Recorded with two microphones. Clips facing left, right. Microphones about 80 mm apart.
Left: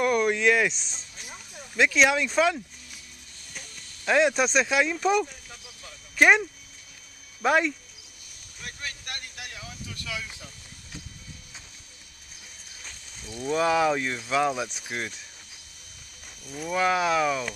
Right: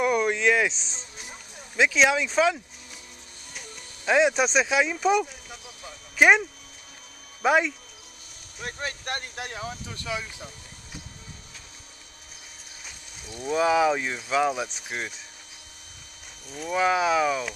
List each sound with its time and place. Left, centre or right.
0.0 s speech: centre
7.4 s speech: centre
8.5 s speech: right
13.2 s a sound: right
13.5 s speech: centre
16.4 s speech: centre
16.7 s speech: centre